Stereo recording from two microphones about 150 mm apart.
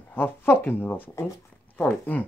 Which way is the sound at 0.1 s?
15° left (ahead or behind).